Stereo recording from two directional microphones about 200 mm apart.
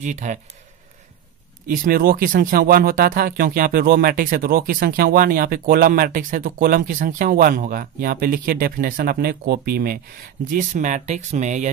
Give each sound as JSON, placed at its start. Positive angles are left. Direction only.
{"t": 0.0, "sound": "speech", "side_deg": -40}
{"t": 1.7, "sound": "speech", "side_deg": -50}
{"t": 10.5, "sound": "speech", "side_deg": -40}